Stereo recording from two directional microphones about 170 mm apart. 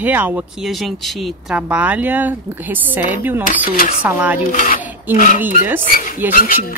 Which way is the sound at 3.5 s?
50° left (ahead or behind).